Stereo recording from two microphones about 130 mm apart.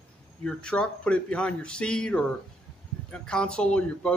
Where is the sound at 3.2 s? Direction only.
5° left (ahead or behind).